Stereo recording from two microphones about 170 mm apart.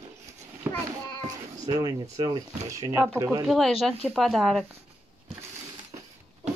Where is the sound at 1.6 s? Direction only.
20° right (ahead or behind).